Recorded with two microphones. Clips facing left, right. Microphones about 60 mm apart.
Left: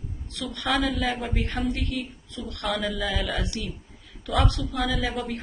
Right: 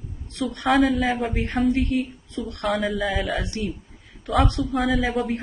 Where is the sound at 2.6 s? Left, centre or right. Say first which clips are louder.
Right 4 dB; centre.